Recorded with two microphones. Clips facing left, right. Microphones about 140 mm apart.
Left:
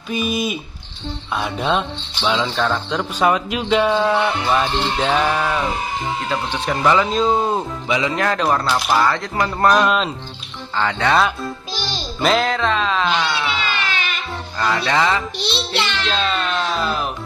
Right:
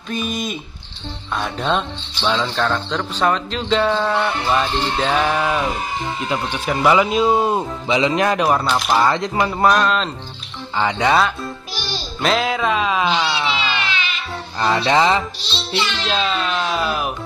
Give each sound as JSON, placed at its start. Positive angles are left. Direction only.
{"t": 0.1, "sound": "speech", "side_deg": 5}
{"t": 7.9, "sound": "speech", "side_deg": -20}
{"t": 9.8, "sound": "speech", "side_deg": 5}
{"t": 10.8, "sound": "speech", "side_deg": -15}
{"t": 12.2, "sound": "speech", "side_deg": 0}
{"t": 13.7, "sound": "baby cry", "side_deg": 45}
{"t": 14.6, "sound": "speech", "side_deg": -20}
{"t": 15.3, "sound": "a child's voice", "side_deg": 65}
{"t": 16.1, "sound": "speech", "side_deg": -5}